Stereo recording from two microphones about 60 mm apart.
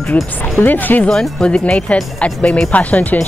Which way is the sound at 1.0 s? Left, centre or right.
Centre.